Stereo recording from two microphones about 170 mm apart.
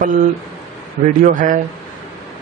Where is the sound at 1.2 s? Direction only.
50° right (ahead or behind).